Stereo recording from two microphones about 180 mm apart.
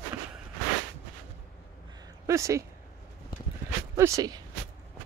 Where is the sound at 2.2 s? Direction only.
15° right (ahead or behind).